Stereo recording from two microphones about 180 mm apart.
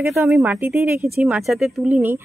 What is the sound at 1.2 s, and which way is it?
Speech, centre (ahead or behind).